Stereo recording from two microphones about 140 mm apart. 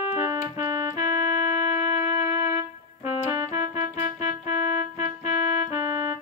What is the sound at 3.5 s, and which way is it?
Music, 55° left (ahead or behind).